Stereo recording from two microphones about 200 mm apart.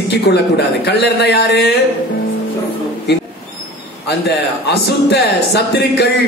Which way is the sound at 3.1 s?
55° left (ahead or behind).